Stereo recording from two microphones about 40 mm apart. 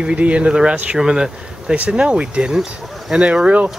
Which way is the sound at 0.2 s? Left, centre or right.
Right.